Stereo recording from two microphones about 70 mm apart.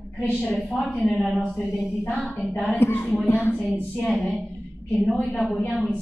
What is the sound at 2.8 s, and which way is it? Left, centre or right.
Speech, left.